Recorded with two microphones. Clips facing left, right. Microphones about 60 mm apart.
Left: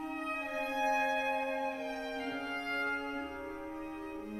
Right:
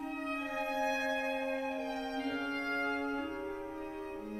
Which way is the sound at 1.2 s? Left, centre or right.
Left.